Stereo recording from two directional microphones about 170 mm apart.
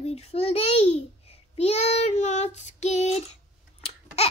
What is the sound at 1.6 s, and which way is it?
Child singing, 40° left (ahead or behind).